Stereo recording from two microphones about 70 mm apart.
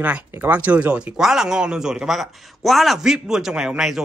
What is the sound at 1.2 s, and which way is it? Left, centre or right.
Speech, centre.